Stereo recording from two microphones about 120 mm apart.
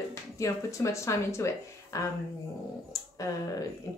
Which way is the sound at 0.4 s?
25° left (ahead or behind).